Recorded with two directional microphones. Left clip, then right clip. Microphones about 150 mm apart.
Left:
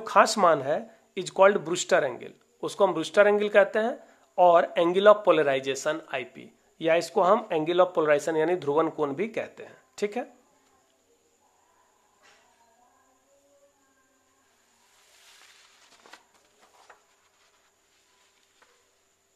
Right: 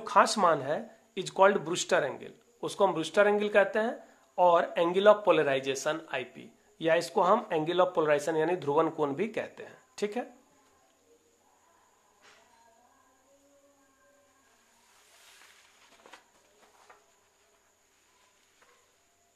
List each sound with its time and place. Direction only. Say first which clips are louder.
0.0 s speech: left 4 dB; 30° left (ahead or behind)